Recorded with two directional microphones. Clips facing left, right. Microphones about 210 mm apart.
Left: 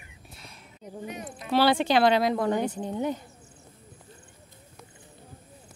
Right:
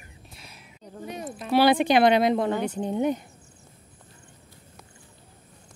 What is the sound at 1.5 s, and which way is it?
Speech, 15° right (ahead or behind).